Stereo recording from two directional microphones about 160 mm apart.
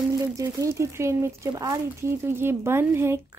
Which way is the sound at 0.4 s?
20° right (ahead or behind).